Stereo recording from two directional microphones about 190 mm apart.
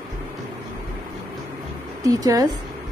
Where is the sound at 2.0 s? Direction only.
20° right (ahead or behind).